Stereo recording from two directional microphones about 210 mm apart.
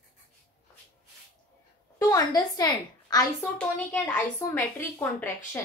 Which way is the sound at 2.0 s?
15° left (ahead or behind).